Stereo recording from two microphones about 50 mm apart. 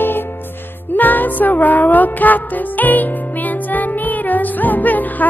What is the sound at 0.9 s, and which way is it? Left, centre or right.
Music, left.